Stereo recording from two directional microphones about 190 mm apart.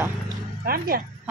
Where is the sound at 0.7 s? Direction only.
50° right (ahead or behind).